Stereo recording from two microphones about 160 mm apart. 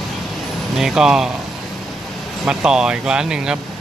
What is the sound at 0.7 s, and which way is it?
Speech, centre (ahead or behind).